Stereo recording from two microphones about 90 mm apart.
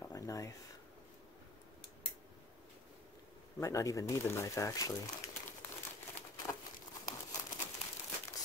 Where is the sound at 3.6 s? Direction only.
35° left (ahead or behind).